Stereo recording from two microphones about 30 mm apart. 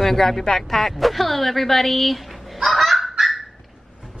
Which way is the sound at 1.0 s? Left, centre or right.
Centre.